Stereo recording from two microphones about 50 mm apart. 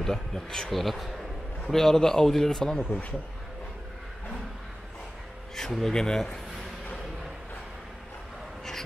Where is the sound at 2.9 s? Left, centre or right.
Left.